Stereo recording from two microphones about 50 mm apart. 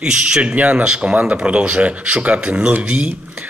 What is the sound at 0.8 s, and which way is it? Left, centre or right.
Speech, centre.